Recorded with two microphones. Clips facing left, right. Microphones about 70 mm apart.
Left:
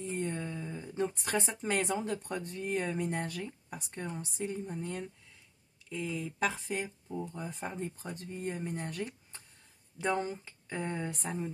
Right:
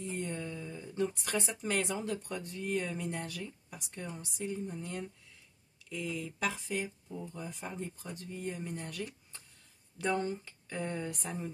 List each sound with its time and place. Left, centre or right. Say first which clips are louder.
0.0 s speech: left 2 dB; left